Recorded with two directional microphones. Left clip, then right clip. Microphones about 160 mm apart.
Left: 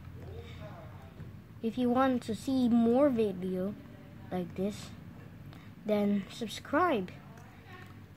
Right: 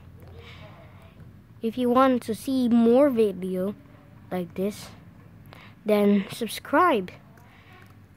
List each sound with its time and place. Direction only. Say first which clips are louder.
1.6 s speech: right 8 dB; 50° right (ahead or behind)